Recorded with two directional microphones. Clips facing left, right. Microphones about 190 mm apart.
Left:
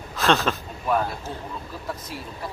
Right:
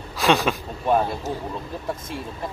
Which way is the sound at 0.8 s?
30° right (ahead or behind).